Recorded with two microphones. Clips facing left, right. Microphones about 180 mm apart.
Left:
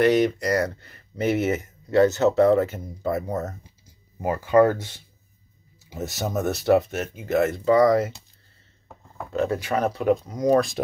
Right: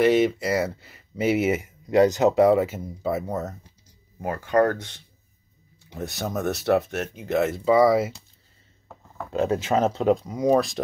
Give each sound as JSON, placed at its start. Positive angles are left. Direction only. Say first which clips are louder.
{"t": 0.0, "sound": "speech", "louder": "even", "side_deg": 0}
{"t": 9.3, "sound": "speech", "louder": "right 2 dB", "side_deg": -20}
{"t": 10.2, "sound": "speech", "louder": "left 1 dB", "side_deg": -5}